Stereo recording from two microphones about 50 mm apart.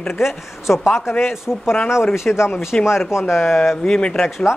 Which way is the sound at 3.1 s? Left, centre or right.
Left.